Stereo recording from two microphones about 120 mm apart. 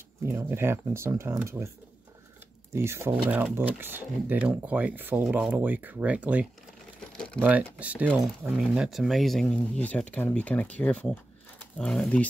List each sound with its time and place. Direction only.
0.3 s speech: 20° right (ahead or behind)
2.7 s speech: 20° right (ahead or behind)
7.0 s crumpling: 5° left (ahead or behind)
7.4 s speech: 10° right (ahead or behind)
8.1 s speech: centre (ahead or behind)